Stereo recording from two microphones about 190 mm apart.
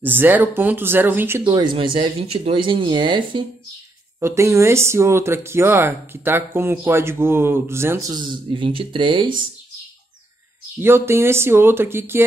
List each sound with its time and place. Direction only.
0.0 s speech: 10° right (ahead or behind)
1.4 s speech: 25° right (ahead or behind)
10.8 s speech: 10° right (ahead or behind)